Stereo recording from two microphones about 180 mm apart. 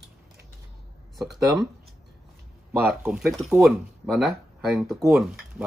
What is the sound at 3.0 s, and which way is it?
Speech, 5° right (ahead or behind).